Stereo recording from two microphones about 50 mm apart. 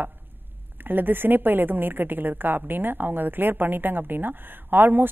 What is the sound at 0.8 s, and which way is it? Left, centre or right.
A woman's voice, right.